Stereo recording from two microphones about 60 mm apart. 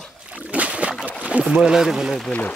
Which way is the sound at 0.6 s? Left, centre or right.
Right.